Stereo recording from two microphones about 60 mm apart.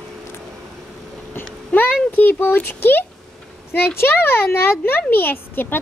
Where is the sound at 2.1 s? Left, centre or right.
Left.